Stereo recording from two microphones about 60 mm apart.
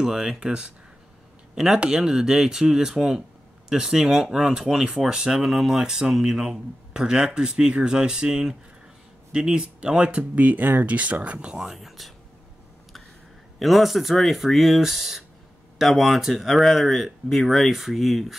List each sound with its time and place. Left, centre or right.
0.0 s speech: centre
13.6 s speech: centre